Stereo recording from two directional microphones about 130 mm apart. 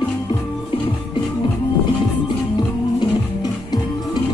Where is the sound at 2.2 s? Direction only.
35° left (ahead or behind).